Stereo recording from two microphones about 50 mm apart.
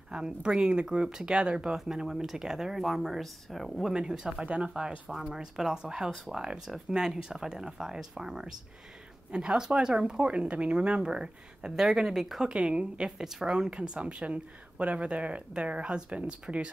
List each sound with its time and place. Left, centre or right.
0.1 s speech: centre
3.9 s speech: centre
6.0 s speech: centre
6.3 s speech: centre
12.4 s speech: centre